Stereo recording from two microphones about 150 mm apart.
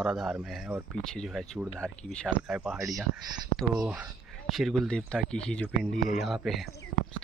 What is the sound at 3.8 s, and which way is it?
Speech, 5° right (ahead or behind).